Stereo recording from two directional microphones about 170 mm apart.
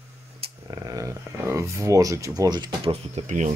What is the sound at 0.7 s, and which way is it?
Speech, 20° right (ahead or behind).